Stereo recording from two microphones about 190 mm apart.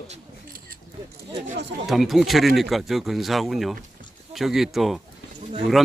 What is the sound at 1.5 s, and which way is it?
Speech, 70° right (ahead or behind).